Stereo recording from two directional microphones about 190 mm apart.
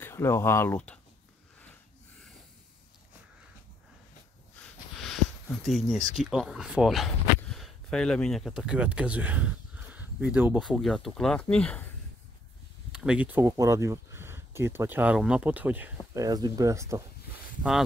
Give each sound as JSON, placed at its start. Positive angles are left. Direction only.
{"t": 0.0, "sound": "speech", "side_deg": 15}
{"t": 5.0, "sound": "a sound", "side_deg": 0}
{"t": 6.3, "sound": "speech", "side_deg": -5}
{"t": 12.9, "sound": "speech", "side_deg": -5}
{"t": 16.3, "sound": "speech", "side_deg": -20}